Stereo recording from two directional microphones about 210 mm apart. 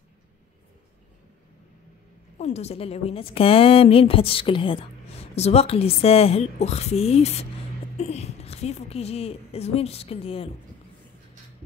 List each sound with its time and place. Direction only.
2.3 s a woman's voice: 30° left (ahead or behind)